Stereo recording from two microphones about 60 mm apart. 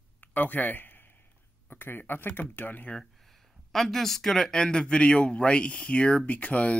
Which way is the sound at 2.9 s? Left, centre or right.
Centre.